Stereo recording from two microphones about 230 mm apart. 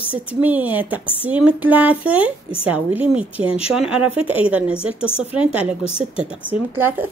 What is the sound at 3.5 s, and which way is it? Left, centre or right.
Speech, left.